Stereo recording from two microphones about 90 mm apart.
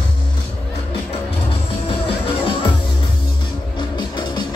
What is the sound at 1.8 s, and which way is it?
Music, 90° left.